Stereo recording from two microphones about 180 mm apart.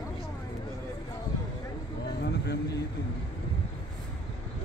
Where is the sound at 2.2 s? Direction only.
65° left (ahead or behind).